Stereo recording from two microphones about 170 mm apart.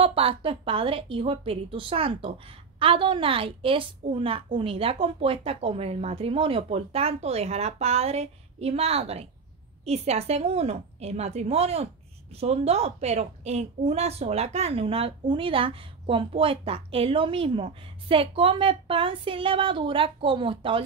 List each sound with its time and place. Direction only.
0.0 s a woman's voice: 35° right (ahead or behind)